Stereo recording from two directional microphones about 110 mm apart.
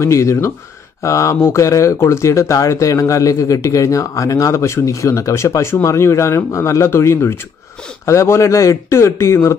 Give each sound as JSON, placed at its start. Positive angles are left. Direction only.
{"t": 0.0, "sound": "speech", "side_deg": 25}